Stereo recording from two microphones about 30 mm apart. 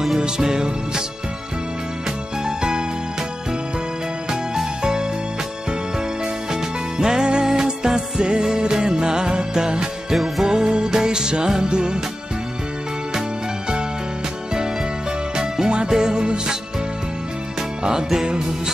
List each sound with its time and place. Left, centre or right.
0.4 s music: right
2.4 s music: right
6.5 s music: right
10.1 s music: centre
10.4 s music: right
15.3 s music: right
17.6 s music: right